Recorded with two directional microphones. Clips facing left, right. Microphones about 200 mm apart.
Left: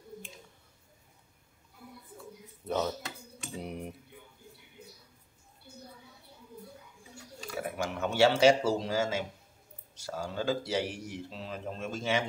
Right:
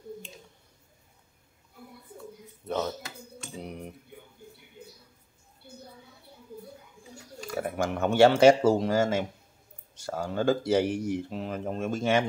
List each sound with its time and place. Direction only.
2.6 s speech: centre (ahead or behind)
3.5 s cutlery: 5° left (ahead or behind)
7.7 s speech: 55° right (ahead or behind)